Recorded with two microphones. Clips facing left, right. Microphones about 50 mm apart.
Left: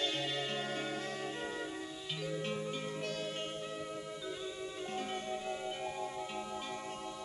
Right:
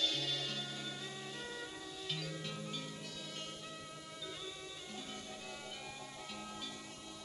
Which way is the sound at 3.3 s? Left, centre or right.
Left.